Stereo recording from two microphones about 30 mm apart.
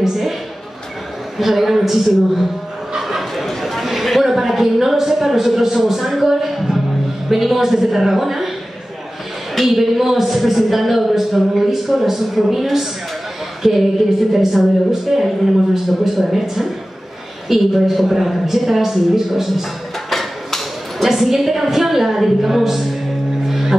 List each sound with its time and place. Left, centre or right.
0.0 s speech: centre
1.4 s speech: centre
3.0 s a sound: centre
3.4 s a sound: centre
3.8 s chatter: centre
4.3 s speech: centre
9.6 s a woman's voice: centre
20.1 s music: centre
21.0 s speech: centre
23.4 s music: centre